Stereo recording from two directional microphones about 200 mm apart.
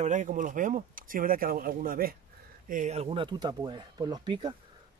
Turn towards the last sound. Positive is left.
turn(degrees=-25)  # may be behind; listen again after turning